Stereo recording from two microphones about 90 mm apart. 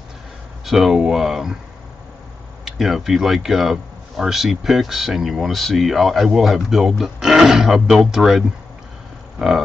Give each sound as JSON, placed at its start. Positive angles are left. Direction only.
{"t": 0.7, "sound": "speech", "side_deg": 0}
{"t": 2.6, "sound": "speech", "side_deg": -5}
{"t": 9.4, "sound": "livestock", "side_deg": 0}